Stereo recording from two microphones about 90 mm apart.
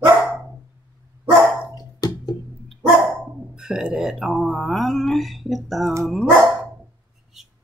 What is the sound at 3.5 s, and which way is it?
Speech, 10° right (ahead or behind).